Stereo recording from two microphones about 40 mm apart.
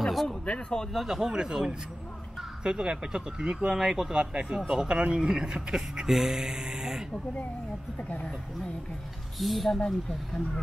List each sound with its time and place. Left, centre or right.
0.5 s speech: centre
0.9 s a man's voice: centre
6.0 s speech: centre
9.4 s speech: centre
9.8 s speech: centre